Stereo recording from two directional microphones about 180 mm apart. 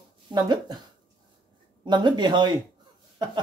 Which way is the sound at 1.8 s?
25° right (ahead or behind).